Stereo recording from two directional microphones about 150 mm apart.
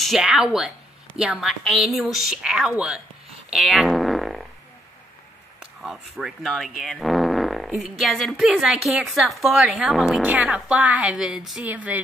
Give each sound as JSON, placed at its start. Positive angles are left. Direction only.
{"t": 0.0, "sound": "speech", "side_deg": 0}
{"t": 3.5, "sound": "fart", "side_deg": 0}
{"t": 5.6, "sound": "speech", "side_deg": -5}